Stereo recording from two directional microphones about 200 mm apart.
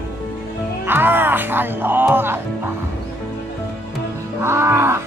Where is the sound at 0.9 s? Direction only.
10° right (ahead or behind).